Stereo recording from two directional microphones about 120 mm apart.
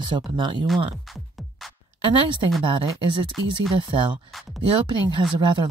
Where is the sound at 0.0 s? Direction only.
40° right (ahead or behind).